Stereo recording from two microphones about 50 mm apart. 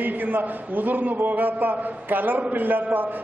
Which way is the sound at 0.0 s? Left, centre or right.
Right.